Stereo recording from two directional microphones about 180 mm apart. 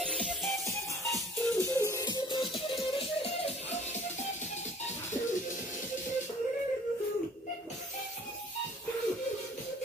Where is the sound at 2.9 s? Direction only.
35° left (ahead or behind).